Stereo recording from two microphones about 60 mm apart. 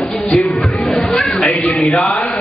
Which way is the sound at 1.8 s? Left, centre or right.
Centre.